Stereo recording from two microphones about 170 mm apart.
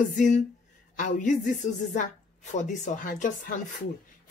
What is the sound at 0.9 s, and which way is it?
A woman's voice, 50° left (ahead or behind).